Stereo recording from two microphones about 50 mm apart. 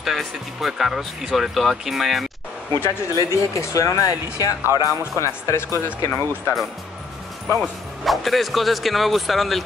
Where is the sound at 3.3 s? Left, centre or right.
Left.